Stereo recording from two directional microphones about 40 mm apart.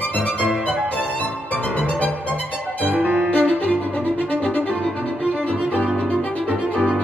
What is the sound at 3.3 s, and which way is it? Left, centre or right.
Violin, left.